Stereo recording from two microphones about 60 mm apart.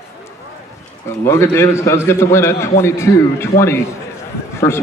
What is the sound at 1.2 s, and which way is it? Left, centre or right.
A man's voice, left.